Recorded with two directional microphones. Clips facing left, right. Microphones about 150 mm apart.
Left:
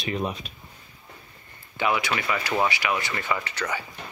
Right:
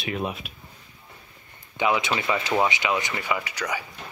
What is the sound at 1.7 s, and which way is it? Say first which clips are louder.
Speech: right 2 dB; 20° right (ahead or behind).